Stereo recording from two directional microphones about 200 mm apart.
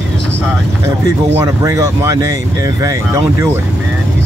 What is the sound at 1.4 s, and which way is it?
Speech, 15° right (ahead or behind).